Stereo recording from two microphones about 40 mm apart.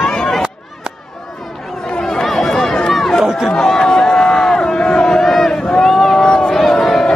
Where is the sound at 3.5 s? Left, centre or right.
Centre.